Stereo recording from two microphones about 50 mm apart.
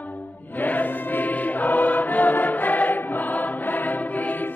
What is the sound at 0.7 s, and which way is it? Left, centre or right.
Music, left.